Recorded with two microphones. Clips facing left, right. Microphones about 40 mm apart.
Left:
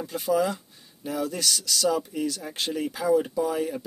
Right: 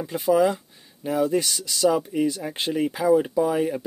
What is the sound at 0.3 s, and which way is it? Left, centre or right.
Speech, centre.